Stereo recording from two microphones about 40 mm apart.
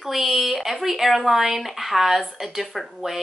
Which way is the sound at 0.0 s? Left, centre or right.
Centre.